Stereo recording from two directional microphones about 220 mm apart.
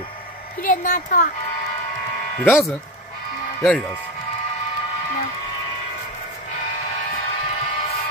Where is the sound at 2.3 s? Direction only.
10° left (ahead or behind).